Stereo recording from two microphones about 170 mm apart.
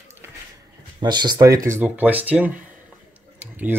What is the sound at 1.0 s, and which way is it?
Speech, 25° right (ahead or behind).